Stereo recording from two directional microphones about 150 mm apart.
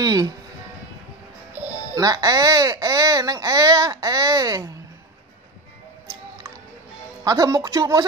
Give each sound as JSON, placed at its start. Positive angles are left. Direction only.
{"t": 0.0, "sound": "speech", "side_deg": -25}
{"t": 1.5, "sound": "music", "side_deg": -15}
{"t": 2.0, "sound": "speech", "side_deg": -25}
{"t": 7.2, "sound": "speech", "side_deg": -25}